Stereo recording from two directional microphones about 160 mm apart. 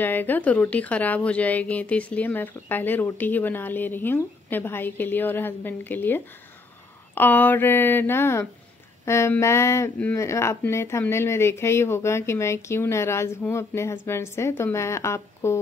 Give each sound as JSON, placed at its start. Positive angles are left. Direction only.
{"t": 0.0, "sound": "speech", "side_deg": 10}